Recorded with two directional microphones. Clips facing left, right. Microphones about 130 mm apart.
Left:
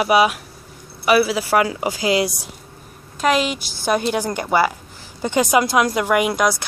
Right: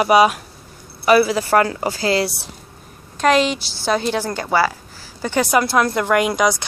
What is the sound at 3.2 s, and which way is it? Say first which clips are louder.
Speech: right 3 dB; 5° left (ahead or behind).